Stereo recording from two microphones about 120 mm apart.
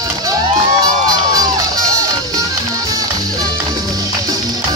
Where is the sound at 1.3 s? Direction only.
30° right (ahead or behind).